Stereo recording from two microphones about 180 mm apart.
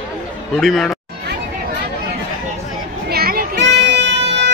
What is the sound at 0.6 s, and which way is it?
Speech, centre (ahead or behind).